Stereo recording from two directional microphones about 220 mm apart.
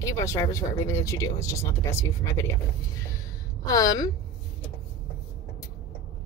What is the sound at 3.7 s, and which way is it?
Speech, 15° left (ahead or behind).